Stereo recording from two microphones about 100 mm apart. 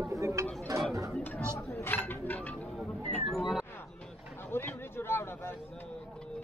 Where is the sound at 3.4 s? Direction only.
5° right (ahead or behind).